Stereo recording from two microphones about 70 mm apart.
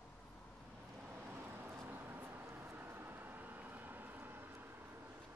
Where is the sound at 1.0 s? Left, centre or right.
Right.